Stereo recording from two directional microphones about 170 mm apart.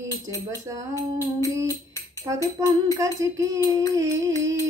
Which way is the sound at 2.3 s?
20° right (ahead or behind).